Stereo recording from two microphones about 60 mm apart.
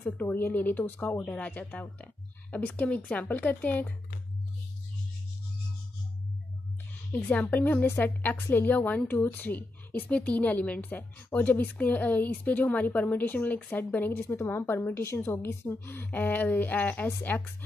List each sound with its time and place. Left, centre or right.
0.3 s a woman's voice: left
7.2 s a woman's voice: left
14.2 s speech: left